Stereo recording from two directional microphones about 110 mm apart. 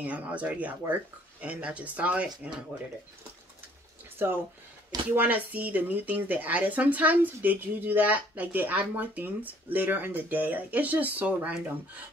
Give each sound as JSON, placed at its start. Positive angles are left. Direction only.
{"t": 0.0, "sound": "speech", "side_deg": -10}
{"t": 4.2, "sound": "speech", "side_deg": -20}